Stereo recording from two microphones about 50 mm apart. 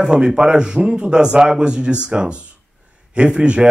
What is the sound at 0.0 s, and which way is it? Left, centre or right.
A man's voice, centre.